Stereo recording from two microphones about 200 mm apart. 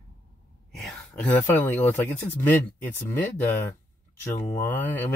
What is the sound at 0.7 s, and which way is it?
Speech, 5° left (ahead or behind).